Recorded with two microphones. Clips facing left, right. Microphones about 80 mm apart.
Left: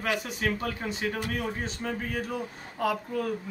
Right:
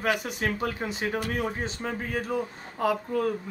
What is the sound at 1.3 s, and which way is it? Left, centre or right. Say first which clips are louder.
Speech: right 2 dB; right.